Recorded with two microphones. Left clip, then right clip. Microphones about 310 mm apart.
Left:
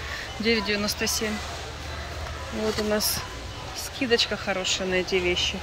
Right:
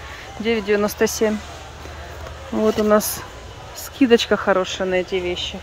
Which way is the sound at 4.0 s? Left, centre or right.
Centre.